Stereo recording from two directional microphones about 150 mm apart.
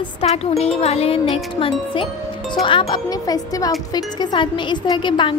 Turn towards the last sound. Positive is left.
turn(degrees=30)  # may be behind; listen again after turning